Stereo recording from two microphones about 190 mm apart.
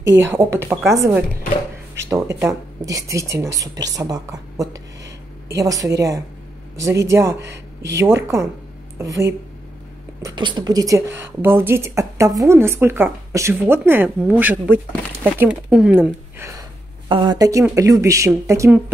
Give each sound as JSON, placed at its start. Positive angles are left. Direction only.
{"t": 0.1, "sound": "speech", "side_deg": -10}